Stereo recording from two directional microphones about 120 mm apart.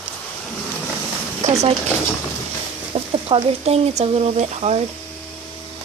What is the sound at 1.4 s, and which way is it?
Speech, 70° right (ahead or behind).